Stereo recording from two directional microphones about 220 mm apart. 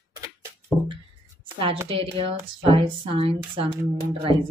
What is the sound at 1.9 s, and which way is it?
Speech, 25° right (ahead or behind).